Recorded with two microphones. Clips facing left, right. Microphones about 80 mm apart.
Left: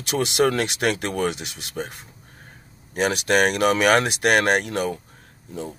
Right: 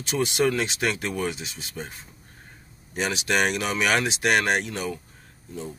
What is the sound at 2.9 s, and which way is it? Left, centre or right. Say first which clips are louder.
Speech: left 5 dB; left.